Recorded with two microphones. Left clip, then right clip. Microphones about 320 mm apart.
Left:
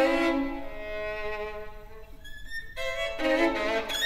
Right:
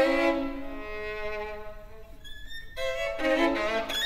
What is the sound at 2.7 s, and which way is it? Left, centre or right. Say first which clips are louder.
Violin: right 2 dB; left.